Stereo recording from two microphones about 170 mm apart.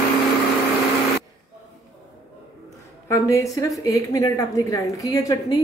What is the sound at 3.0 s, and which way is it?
A woman's voice, 15° left (ahead or behind).